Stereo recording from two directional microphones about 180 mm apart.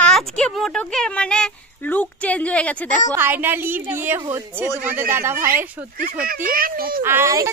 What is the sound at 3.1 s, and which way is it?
A woman's voice, 10° right (ahead or behind).